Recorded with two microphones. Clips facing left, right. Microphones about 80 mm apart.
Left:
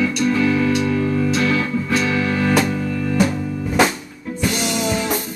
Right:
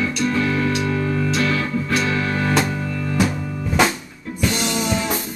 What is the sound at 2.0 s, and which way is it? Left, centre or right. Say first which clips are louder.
Music: left 2 dB; right.